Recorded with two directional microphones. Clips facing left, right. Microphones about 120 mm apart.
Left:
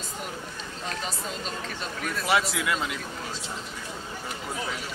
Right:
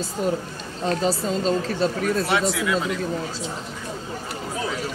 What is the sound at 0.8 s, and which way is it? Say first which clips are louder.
Speech: right 12 dB; 35° right (ahead or behind).